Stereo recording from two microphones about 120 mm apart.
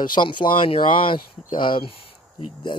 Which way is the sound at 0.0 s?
40° left (ahead or behind).